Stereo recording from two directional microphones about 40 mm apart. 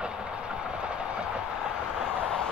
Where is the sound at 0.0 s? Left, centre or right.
Right.